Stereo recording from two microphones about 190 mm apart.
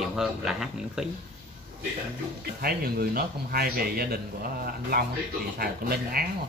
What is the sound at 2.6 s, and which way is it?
A man's voice, 55° right (ahead or behind).